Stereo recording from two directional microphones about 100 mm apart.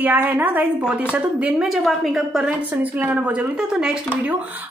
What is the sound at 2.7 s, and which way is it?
A woman's voice, 20° right (ahead or behind).